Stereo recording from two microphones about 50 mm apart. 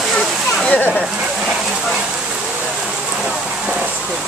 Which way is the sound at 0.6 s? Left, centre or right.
Left.